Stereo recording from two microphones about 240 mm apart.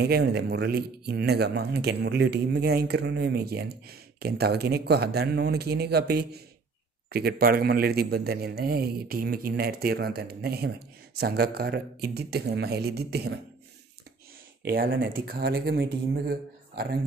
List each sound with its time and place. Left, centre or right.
0.0 s a man's voice: right
14.6 s a man's voice: right